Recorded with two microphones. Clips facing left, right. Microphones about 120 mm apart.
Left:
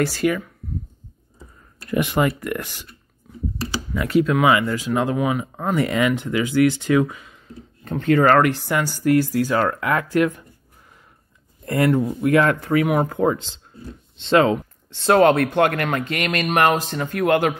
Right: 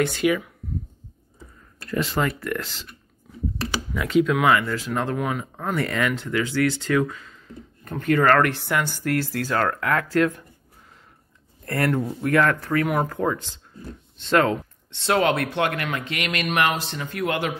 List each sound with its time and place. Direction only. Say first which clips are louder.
0.0 s speech: left 1 dB; centre (ahead or behind)
1.9 s speech: left 4 dB; 15° left (ahead or behind)
3.9 s speech: left 2 dB; centre (ahead or behind)
7.8 s speech: left 3 dB; 25° left (ahead or behind)
8.3 s speech: left 3 dB; 10° left (ahead or behind)
11.6 s speech: left 5 dB; 15° left (ahead or behind)
14.9 s speech: left 6 dB; 40° left (ahead or behind)